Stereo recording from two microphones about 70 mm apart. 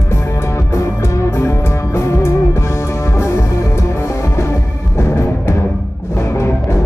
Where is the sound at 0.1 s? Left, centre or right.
Left.